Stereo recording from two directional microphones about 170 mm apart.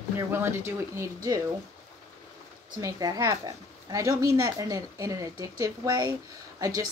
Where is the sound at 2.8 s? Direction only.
20° right (ahead or behind).